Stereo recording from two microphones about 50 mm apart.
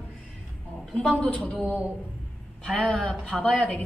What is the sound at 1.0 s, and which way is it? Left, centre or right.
Speech, left.